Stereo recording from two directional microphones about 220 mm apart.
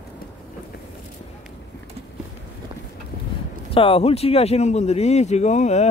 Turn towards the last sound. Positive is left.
turn(degrees=30)  # may be behind; listen again after turning